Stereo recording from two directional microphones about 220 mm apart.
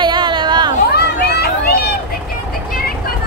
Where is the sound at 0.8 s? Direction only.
45° left (ahead or behind).